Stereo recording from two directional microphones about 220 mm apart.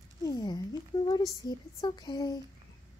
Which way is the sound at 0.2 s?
15° left (ahead or behind).